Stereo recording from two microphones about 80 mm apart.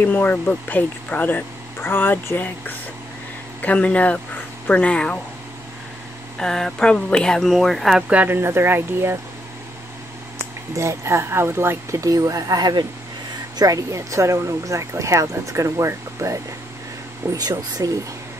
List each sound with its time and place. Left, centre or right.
0.0 s speech: left
6.3 s speech: centre
8.1 s speech: right
10.7 s speech: right
12.0 s speech: right
13.6 s speech: right
17.3 s speech: right